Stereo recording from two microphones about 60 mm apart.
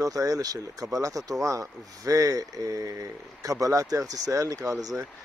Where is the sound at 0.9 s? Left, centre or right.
Right.